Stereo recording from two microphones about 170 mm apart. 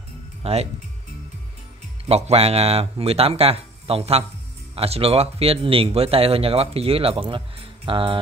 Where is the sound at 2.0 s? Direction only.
35° right (ahead or behind).